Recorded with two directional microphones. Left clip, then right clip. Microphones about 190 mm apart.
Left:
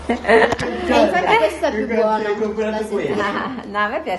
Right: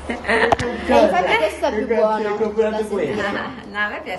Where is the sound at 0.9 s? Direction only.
35° right (ahead or behind).